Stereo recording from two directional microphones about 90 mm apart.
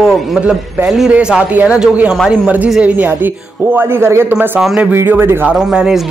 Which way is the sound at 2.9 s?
20° right (ahead or behind).